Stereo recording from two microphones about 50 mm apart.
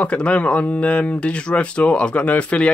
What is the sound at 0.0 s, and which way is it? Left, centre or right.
Speech, left.